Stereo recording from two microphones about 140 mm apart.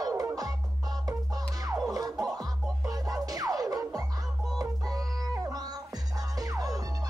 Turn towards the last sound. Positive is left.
turn(degrees=-25)  # may be behind; listen again after turning